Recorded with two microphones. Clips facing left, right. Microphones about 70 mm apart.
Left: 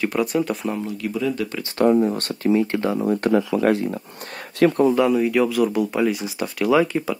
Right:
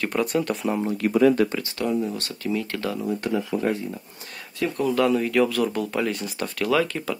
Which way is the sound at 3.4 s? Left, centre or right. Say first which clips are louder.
Left 6 dB; left.